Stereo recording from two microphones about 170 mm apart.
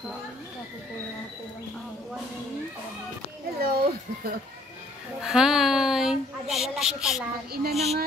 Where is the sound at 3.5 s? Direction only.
65° right (ahead or behind).